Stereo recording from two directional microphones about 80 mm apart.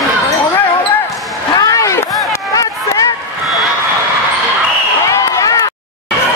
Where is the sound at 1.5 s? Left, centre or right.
Left.